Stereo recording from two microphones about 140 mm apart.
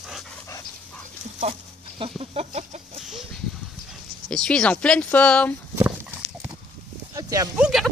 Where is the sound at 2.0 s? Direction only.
40° right (ahead or behind).